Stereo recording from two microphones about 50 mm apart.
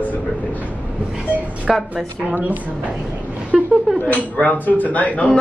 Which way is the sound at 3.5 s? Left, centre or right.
Centre.